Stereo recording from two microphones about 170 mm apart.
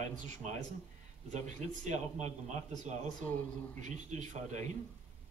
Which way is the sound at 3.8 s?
45° right (ahead or behind).